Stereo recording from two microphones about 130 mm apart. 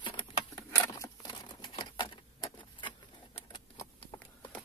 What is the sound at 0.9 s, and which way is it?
Patter, 30° left (ahead or behind).